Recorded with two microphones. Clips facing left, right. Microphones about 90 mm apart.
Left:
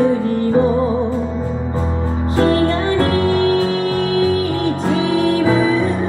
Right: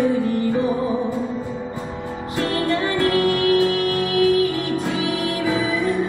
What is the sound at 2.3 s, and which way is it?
Music, 35° left (ahead or behind).